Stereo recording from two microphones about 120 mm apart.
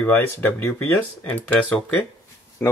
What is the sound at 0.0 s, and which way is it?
Speech, 15° left (ahead or behind).